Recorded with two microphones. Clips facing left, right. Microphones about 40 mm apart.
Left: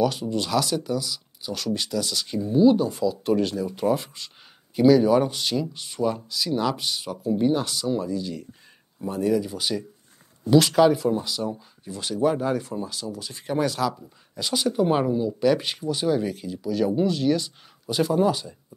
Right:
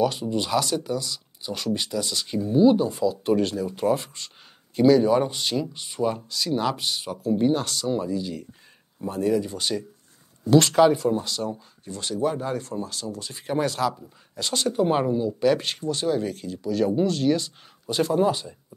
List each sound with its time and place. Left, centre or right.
0.0 s speech: centre
7.9 s speech: centre
11.9 s speech: centre
12.7 s speech: centre
14.0 s speech: centre
16.6 s speech: centre